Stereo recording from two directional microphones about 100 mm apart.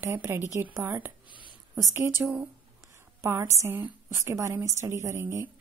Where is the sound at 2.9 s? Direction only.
30° right (ahead or behind).